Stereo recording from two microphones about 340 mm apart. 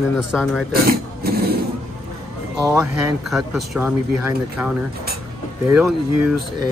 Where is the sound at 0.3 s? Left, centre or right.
Centre.